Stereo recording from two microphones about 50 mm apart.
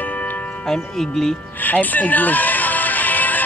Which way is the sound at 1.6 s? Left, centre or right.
Left.